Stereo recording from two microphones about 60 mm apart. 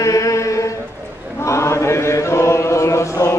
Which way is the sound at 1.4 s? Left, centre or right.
Left.